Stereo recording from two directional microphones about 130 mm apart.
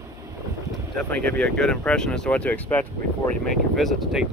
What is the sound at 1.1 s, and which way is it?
Speech, 10° left (ahead or behind).